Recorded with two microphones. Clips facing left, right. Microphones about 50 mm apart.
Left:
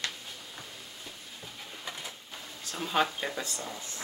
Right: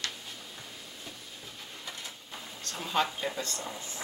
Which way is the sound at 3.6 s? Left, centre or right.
Centre.